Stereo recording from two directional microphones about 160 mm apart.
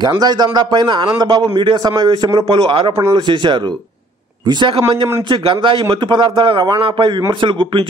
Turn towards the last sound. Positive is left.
turn(degrees=-30)  # may be behind; listen again after turning